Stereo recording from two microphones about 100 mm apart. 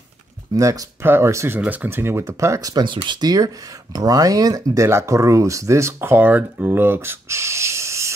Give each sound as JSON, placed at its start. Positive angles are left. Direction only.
{"t": 0.6, "sound": "speech", "side_deg": -30}
{"t": 1.6, "sound": "speech", "side_deg": -15}
{"t": 2.7, "sound": "speech", "side_deg": -55}